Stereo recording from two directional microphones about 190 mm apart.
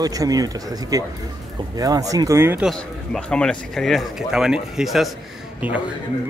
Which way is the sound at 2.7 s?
5° left (ahead or behind).